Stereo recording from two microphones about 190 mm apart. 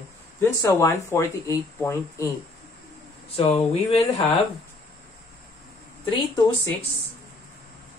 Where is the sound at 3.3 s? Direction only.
35° left (ahead or behind).